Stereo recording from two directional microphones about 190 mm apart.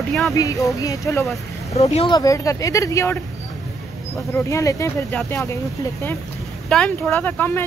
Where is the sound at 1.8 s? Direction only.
30° left (ahead or behind).